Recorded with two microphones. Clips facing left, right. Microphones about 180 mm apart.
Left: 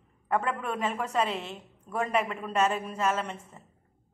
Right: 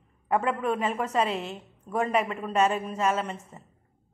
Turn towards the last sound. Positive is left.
turn(degrees=-5)  # may be behind; listen again after turning